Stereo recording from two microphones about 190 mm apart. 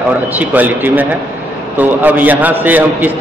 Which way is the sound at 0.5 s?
10° right (ahead or behind).